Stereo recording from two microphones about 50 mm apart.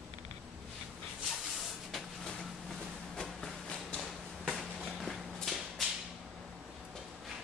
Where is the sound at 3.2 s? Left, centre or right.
Left.